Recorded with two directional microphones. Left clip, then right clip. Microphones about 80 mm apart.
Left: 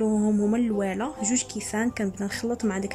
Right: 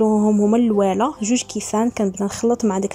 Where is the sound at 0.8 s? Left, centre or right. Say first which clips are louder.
Right 10 dB; right.